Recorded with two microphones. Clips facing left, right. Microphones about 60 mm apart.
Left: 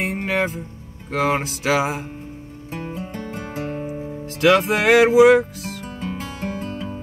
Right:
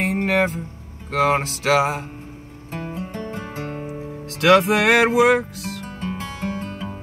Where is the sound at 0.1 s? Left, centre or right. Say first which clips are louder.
Right 3 dB; right.